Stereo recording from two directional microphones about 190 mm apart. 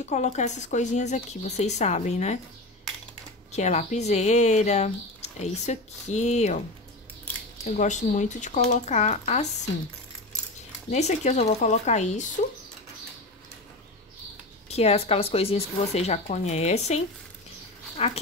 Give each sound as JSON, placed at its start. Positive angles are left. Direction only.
{"t": 0.0, "sound": "speech", "side_deg": 40}
{"t": 3.5, "sound": "speech", "side_deg": 35}
{"t": 7.6, "sound": "speech", "side_deg": 40}
{"t": 10.9, "sound": "speech", "side_deg": 35}
{"t": 14.7, "sound": "speech", "side_deg": 35}